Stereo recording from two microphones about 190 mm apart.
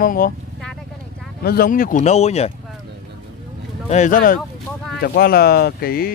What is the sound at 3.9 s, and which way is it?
A man's voice, 40° left (ahead or behind).